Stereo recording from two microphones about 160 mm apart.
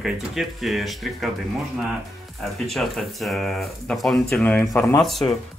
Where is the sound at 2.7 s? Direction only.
Centre (ahead or behind).